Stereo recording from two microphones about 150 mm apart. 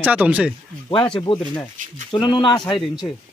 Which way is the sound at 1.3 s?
35° left (ahead or behind).